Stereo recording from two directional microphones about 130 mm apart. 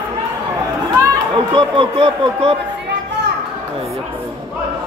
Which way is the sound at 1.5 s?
40° right (ahead or behind).